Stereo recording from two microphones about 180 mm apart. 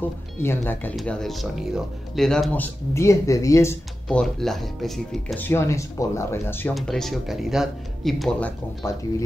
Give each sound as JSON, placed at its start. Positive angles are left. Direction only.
{"t": 0.4, "sound": "speech", "side_deg": 10}
{"t": 0.9, "sound": "speech", "side_deg": 0}
{"t": 4.1, "sound": "speech", "side_deg": 5}
{"t": 5.5, "sound": "speech", "side_deg": 15}
{"t": 6.7, "sound": "speech", "side_deg": 0}